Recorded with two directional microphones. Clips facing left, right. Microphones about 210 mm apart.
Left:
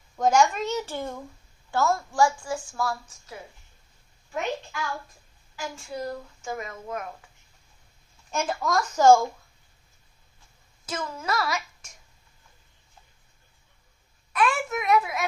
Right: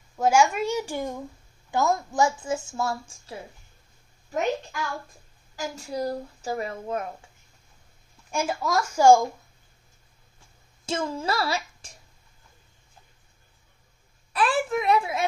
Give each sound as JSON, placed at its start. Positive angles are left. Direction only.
{"t": 0.2, "sound": "a child's voice", "side_deg": -10}
{"t": 5.8, "sound": "speech", "side_deg": -35}
{"t": 8.3, "sound": "a child's voice", "side_deg": -10}
{"t": 10.9, "sound": "speech", "side_deg": -30}
{"t": 14.3, "sound": "speech", "side_deg": -30}